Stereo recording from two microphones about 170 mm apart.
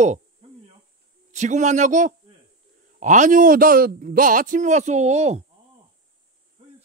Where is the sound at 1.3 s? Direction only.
45° right (ahead or behind).